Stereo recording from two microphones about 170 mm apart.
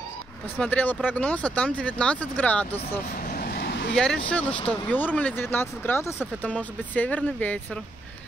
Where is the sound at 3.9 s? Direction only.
5° left (ahead or behind).